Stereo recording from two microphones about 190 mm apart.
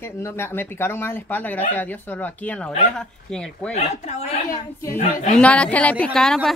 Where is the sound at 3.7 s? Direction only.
35° left (ahead or behind).